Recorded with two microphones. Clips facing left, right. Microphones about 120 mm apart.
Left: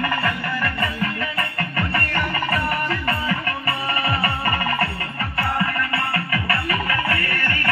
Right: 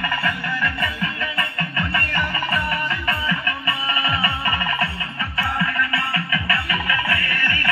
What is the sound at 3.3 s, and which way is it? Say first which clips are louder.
Music: left 1 dB; 55° left (ahead or behind).